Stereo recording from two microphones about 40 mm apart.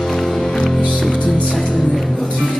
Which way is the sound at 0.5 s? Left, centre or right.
Centre.